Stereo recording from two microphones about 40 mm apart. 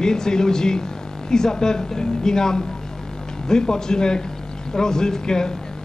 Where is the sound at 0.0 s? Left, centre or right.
Centre.